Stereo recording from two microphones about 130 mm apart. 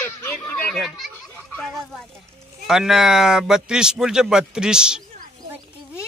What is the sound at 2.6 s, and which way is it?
Speech, 5° right (ahead or behind).